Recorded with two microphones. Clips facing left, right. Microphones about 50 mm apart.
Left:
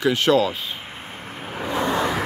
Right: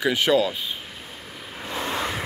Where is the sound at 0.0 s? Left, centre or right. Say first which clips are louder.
Left 2 dB; centre.